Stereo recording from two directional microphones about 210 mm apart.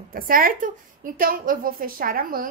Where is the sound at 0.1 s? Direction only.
45° right (ahead or behind).